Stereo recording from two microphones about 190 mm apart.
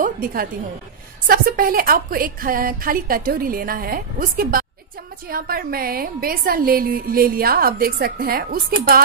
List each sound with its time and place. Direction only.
0.0 s a woman's voice: 50° right (ahead or behind)